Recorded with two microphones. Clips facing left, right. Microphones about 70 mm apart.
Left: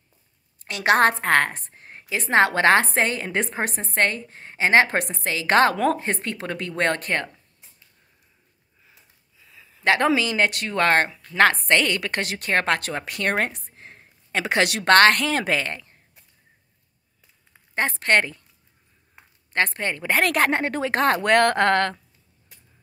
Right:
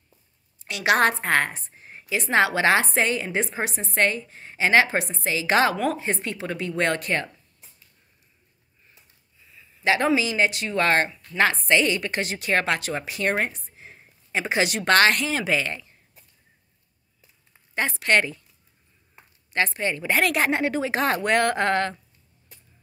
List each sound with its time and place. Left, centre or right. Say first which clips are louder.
0.6 s a woman's voice: left 2 dB; left
1.2 s a woman's voice: left 3 dB; left
4.8 s a woman's voice: left 1 dB; left
9.4 s a sound: left 2 dB; left
9.8 s a woman's voice: left 1 dB; left
14.3 s a woman's voice: left 2 dB; left
17.7 s a woman's voice: left 1 dB; left
19.5 s a woman's voice: left 1 dB; left